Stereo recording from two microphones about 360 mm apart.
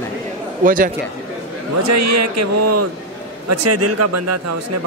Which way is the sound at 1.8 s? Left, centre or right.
Right.